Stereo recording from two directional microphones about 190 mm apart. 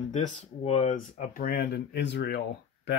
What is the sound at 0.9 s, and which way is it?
Speech, 45° left (ahead or behind).